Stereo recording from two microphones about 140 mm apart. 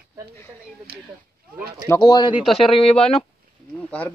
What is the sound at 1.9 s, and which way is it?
Speech, 30° left (ahead or behind).